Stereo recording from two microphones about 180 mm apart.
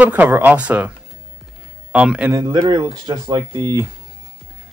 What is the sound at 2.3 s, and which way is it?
Speech, 25° right (ahead or behind).